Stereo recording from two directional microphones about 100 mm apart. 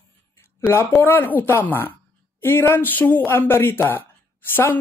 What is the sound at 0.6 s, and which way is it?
A man's voice, 25° left (ahead or behind).